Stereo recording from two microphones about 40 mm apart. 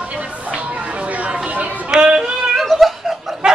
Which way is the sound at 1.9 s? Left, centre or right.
Right.